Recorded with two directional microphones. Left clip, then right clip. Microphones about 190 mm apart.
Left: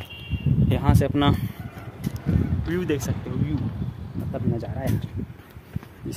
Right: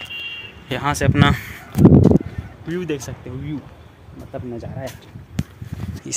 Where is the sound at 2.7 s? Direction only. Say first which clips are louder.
Right 2 dB; 10° left (ahead or behind).